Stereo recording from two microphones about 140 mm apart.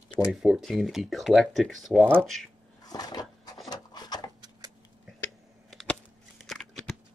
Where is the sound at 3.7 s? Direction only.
30° left (ahead or behind).